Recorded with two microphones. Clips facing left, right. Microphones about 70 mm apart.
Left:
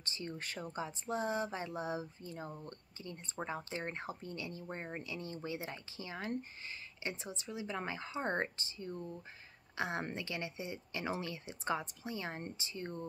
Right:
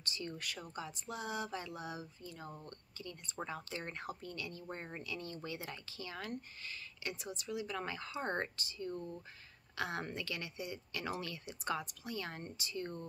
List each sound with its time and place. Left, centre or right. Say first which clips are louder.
0.0 s speech: even; left